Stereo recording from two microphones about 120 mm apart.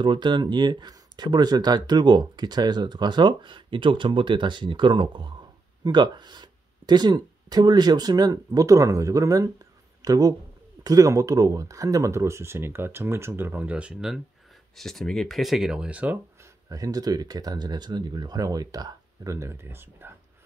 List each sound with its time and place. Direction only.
0.0 s speech: 40° right (ahead or behind); by 16.2 s 10° right (ahead or behind)
16.6 s speech: 30° right (ahead or behind)